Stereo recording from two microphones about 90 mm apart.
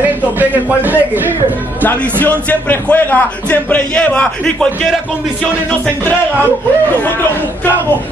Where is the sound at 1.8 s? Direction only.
20° left (ahead or behind).